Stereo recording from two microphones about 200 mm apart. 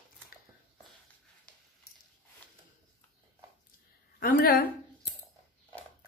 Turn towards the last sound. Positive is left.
turn(degrees=45)  # may be behind; listen again after turning